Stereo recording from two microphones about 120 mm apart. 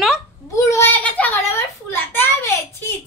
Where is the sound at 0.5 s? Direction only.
25° left (ahead or behind).